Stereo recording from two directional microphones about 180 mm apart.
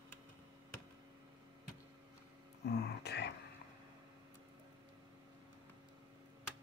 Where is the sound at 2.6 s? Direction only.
70° left (ahead or behind).